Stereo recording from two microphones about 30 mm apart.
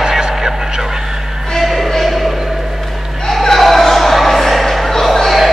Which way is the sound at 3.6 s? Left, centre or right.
Centre.